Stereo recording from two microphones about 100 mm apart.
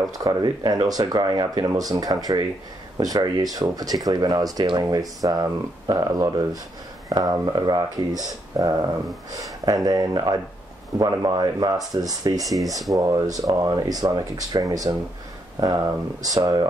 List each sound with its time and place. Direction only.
0.2 s speech: 40° right (ahead or behind)
12.4 s speech: centre (ahead or behind)
12.9 s speech: 35° right (ahead or behind)